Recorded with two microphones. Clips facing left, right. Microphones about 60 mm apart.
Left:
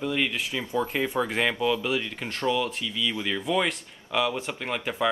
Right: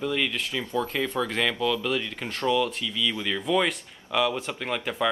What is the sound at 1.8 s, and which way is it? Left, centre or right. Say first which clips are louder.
Speech: even; centre.